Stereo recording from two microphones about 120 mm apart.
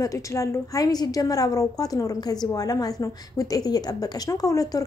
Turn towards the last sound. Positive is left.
turn(degrees=30)  # may be behind; listen again after turning